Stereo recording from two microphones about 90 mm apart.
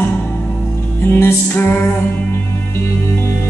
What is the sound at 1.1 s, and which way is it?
Music, 30° left (ahead or behind).